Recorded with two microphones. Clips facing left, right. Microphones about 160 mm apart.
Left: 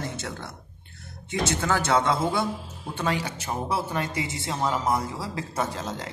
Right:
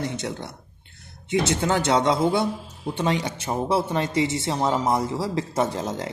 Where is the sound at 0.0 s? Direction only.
15° right (ahead or behind).